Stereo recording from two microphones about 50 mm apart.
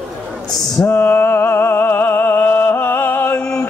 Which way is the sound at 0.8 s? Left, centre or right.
Left.